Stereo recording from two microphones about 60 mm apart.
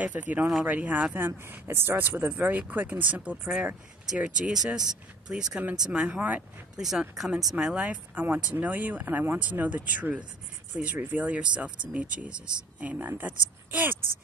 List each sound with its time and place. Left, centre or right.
0.0 s speech: right
1.1 s speech: right
4.1 s speech: centre
6.0 s speech: right
6.8 s speech: centre
7.5 s speech: centre
8.1 s speech: right
13.2 s a woman's voice: right